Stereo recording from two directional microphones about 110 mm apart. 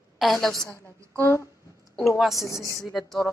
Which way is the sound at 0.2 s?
Centre (ahead or behind).